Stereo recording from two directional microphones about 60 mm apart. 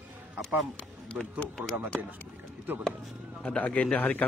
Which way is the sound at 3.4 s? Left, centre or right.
Centre.